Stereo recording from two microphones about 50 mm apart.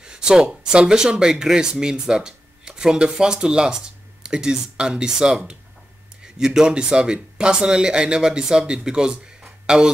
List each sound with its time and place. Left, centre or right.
0.0 s speech: centre